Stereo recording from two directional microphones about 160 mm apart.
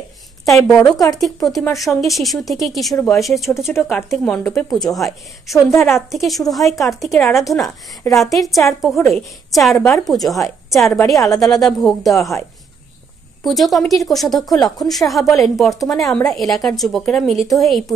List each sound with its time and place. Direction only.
0.5 s speech: centre (ahead or behind)
13.4 s speech: centre (ahead or behind)
14.4 s speech: 25° left (ahead or behind)
14.8 s speech: centre (ahead or behind)